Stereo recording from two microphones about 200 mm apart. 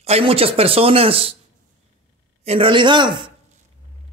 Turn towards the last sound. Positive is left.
turn(degrees=-25)  # may be behind; listen again after turning